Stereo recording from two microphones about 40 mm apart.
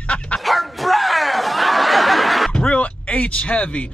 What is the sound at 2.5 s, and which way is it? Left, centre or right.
Speech, left.